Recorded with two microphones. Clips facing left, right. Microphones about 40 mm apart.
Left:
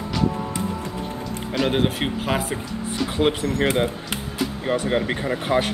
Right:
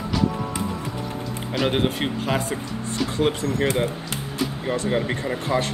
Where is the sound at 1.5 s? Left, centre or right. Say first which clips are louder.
Left 1 dB; centre.